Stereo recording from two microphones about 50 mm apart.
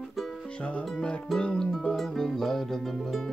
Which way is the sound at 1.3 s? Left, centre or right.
Centre.